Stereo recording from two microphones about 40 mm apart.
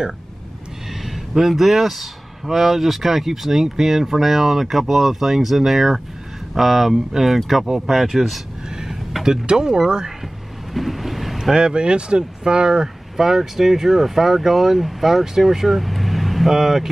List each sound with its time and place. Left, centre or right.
1.0 s speech: centre
7.6 s speech: centre
7.9 s speech: centre
8.6 s a sound: centre
9.2 s speech: centre
10.7 s thunder: centre
11.5 s speech: right
13.2 s speech: centre